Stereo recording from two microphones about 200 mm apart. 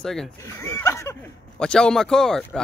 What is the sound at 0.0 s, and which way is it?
Speech, centre (ahead or behind).